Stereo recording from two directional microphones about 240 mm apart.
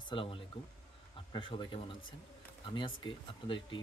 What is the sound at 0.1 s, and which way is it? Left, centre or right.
Speech, left.